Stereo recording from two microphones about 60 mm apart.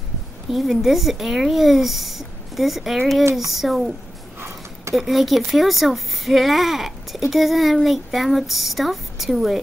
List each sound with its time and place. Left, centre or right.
0.5 s speech: centre
4.4 s a sound: right
4.9 s speech: centre